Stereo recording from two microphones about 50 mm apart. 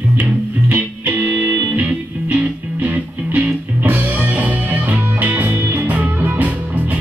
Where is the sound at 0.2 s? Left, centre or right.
Right.